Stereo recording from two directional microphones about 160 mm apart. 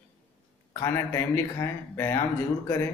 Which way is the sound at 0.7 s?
15° left (ahead or behind).